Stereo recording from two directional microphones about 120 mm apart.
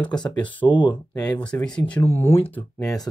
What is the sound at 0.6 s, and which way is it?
Speech, 40° left (ahead or behind).